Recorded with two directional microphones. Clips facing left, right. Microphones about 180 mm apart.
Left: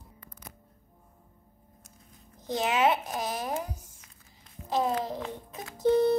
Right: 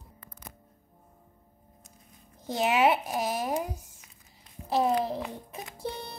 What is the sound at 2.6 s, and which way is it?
Speech, 10° right (ahead or behind).